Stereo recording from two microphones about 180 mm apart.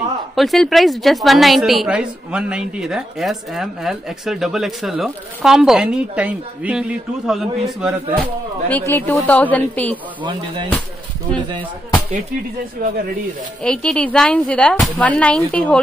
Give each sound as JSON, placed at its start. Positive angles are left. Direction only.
{"t": 0.4, "sound": "a woman's voice", "side_deg": 0}
{"t": 8.6, "sound": "a woman's voice", "side_deg": 10}
{"t": 10.2, "sound": "speech", "side_deg": -25}
{"t": 12.8, "sound": "speech", "side_deg": -55}
{"t": 13.7, "sound": "a woman's voice", "side_deg": 5}